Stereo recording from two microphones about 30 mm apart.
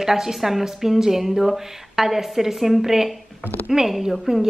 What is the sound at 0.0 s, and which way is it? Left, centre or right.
A woman's voice, centre.